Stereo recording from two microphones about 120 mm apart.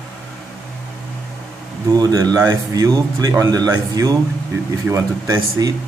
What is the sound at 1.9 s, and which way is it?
A man's voice, 30° right (ahead or behind).